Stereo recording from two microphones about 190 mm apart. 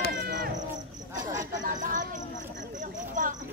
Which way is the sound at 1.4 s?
40° right (ahead or behind).